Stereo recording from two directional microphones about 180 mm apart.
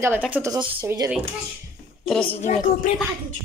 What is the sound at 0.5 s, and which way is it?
Speech, 25° right (ahead or behind).